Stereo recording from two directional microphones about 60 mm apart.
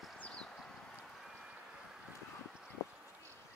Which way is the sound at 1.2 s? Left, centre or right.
Centre.